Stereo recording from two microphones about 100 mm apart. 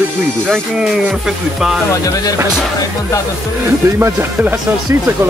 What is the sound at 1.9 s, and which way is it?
Speech, 35° left (ahead or behind).